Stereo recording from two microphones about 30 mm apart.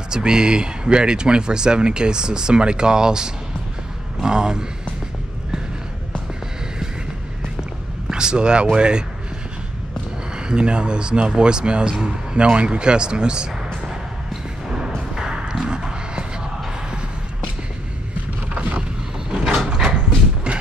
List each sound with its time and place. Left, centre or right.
0.1 s speech: right
8.1 s speech: right
10.3 s speech: right
15.4 s a sound: right
19.7 s dog: right
20.5 s mechanisms: right